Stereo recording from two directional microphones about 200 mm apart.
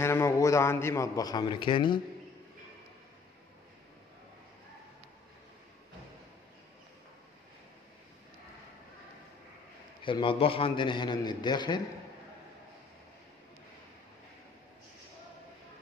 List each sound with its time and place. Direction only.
0.0 s a man's voice: 15° left (ahead or behind)
10.0 s a man's voice: 25° left (ahead or behind)